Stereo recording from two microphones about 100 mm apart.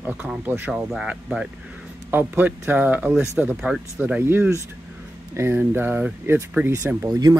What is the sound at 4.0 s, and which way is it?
Speech, 20° right (ahead or behind).